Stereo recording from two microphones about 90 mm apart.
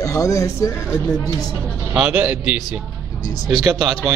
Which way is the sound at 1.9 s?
20° right (ahead or behind).